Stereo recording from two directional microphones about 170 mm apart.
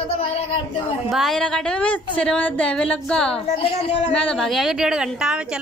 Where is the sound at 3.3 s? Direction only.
35° left (ahead or behind).